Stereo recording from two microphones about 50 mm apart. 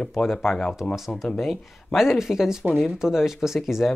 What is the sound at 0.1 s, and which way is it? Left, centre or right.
Speech, centre.